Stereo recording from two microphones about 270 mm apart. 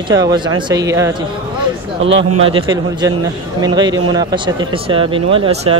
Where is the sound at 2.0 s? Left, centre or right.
Right.